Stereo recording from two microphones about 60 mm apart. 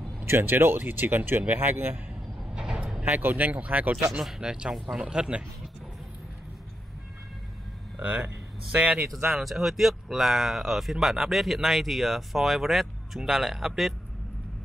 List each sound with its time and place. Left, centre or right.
0.2 s speech: right
2.5 s vehicle: centre
3.0 s speech: right
4.1 s speech: centre
8.7 s speech: right
9.3 s speech: centre